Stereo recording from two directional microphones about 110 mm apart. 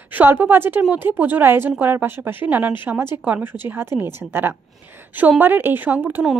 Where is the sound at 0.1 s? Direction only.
15° right (ahead or behind).